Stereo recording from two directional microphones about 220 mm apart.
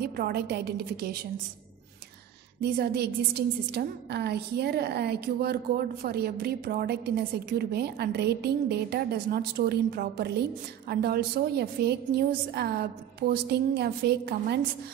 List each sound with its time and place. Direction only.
0.0 s a woman's voice: 45° right (ahead or behind)
2.6 s a woman's voice: 45° right (ahead or behind)